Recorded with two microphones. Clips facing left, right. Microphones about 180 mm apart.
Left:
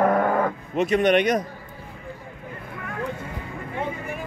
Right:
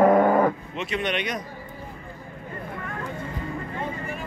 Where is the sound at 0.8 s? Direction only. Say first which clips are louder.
Left 12 dB; 45° left (ahead or behind).